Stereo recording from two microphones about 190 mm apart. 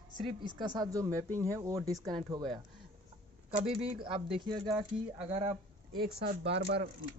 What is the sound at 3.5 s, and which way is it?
Speech, 35° right (ahead or behind).